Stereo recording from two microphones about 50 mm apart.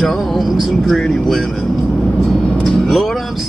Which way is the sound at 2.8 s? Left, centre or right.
Centre.